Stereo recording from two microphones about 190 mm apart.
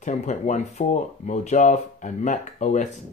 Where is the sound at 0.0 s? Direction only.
40° left (ahead or behind).